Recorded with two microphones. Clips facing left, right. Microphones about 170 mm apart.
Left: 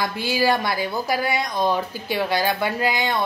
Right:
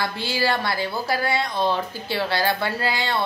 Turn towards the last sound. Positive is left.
turn(degrees=15)  # may be behind; listen again after turning